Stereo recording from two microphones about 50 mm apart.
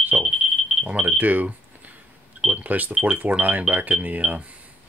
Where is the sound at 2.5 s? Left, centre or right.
Right.